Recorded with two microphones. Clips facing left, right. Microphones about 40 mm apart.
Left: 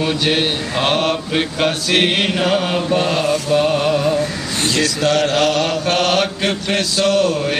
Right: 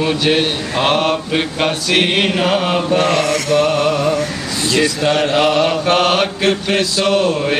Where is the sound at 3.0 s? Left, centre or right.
Right.